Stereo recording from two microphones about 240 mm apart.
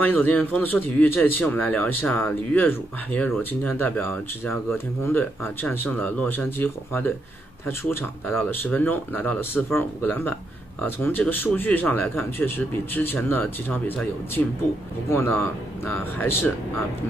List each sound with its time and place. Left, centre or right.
0.0 s a man's voice: centre